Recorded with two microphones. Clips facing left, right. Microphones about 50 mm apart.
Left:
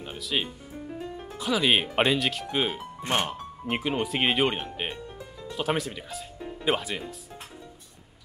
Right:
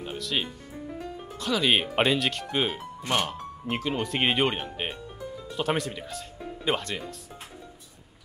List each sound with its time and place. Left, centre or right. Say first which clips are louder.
0.0 s speech: even; centre
3.1 s speech: even; centre
4.1 s speech: right 1 dB; centre